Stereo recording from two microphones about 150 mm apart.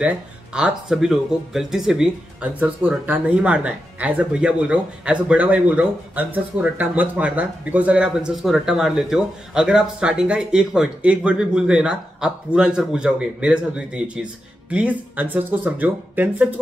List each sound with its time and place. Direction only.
0.0 s speech: 5° right (ahead or behind)